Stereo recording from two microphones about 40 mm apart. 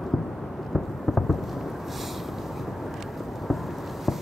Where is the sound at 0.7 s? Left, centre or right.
Centre.